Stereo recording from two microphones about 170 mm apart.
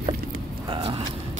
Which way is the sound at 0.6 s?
30° right (ahead or behind).